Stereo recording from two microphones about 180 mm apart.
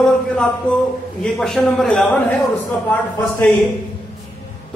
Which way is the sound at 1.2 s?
5° left (ahead or behind).